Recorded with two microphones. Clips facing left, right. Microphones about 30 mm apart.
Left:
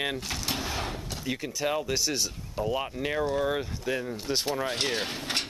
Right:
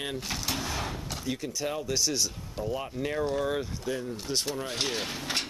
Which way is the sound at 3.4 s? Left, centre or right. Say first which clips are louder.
Left 2 dB; centre.